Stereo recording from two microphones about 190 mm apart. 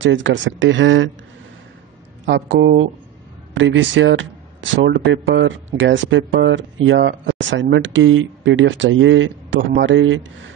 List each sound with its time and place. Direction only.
0.0 s speech: 80° right
2.2 s speech: 85° right